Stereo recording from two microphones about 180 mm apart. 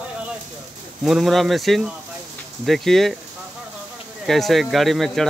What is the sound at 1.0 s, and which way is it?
Speech, centre (ahead or behind).